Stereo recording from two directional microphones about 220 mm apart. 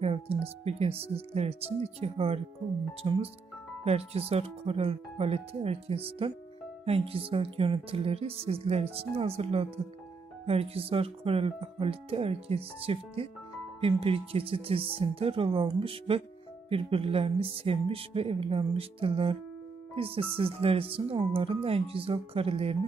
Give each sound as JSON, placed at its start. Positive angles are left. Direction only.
{"t": 0.0, "sound": "speech", "side_deg": -25}